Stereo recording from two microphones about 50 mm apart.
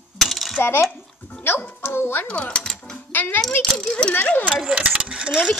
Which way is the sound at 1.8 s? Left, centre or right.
Left.